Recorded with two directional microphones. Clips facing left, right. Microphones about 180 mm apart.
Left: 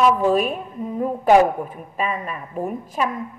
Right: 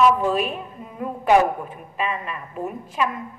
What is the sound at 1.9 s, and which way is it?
Speech, 45° left (ahead or behind).